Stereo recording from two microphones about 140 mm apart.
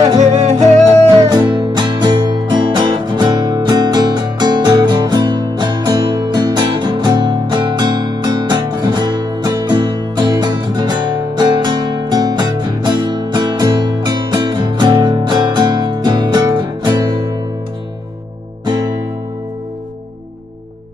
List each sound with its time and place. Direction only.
0.4 s music: 55° right (ahead or behind)
1.1 s music: 30° right (ahead or behind)
18.7 s music: 30° right (ahead or behind)